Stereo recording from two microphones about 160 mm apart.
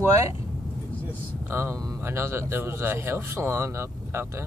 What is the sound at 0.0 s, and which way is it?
Speech, 15° right (ahead or behind).